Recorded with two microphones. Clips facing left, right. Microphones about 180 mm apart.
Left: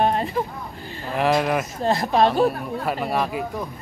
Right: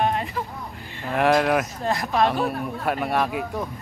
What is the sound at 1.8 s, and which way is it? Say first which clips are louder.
Speech: left 3 dB; 30° left (ahead or behind).